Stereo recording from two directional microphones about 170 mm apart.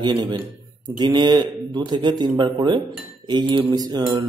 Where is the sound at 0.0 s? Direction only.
25° right (ahead or behind).